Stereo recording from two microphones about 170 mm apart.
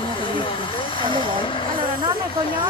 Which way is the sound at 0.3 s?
30° left (ahead or behind).